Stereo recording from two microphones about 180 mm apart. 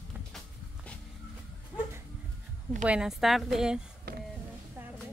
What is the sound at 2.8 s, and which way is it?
Speech, 5° right (ahead or behind).